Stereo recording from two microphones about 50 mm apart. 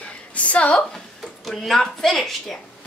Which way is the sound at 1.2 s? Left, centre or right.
Centre.